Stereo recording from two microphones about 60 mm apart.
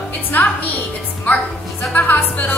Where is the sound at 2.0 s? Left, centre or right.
Left.